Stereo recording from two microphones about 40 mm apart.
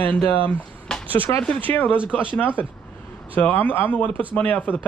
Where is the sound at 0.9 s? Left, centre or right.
Centre.